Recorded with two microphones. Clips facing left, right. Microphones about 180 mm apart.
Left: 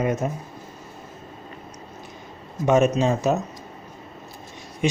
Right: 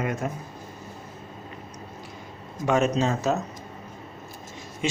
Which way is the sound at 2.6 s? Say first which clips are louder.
Left 4 dB; 20° left (ahead or behind).